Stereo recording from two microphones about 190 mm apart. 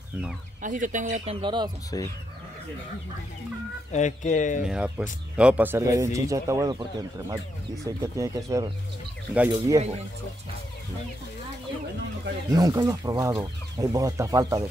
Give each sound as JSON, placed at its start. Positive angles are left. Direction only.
{"t": 0.6, "sound": "speech", "side_deg": -45}
{"t": 1.9, "sound": "speech", "side_deg": 20}
{"t": 3.9, "sound": "speech", "side_deg": 40}
{"t": 4.6, "sound": "speech", "side_deg": -5}
{"t": 9.8, "sound": "speech", "side_deg": -35}
{"t": 12.5, "sound": "speech", "side_deg": -20}